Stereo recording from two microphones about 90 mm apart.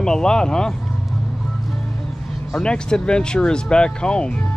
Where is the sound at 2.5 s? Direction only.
10° left (ahead or behind).